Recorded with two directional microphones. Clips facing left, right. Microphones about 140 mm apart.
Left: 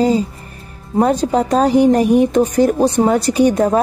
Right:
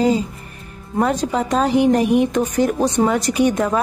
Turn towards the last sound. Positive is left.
turn(degrees=35)  # may be behind; listen again after turning